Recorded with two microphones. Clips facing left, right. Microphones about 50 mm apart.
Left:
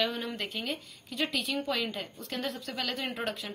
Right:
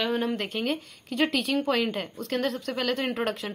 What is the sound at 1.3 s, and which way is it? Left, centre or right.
A woman's voice, right.